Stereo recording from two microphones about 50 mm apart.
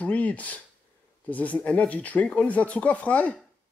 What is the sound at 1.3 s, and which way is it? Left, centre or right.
Speech, left.